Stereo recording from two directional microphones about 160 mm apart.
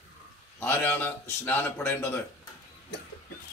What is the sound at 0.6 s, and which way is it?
A man's voice, 10° left (ahead or behind).